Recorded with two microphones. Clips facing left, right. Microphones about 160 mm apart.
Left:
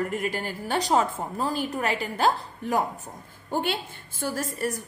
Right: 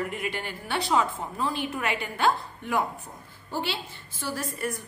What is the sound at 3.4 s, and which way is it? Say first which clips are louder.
A woman's voice: left 4 dB; 50° left (ahead or behind).